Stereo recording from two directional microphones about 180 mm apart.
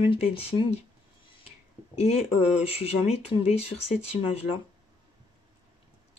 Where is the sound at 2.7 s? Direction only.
35° left (ahead or behind).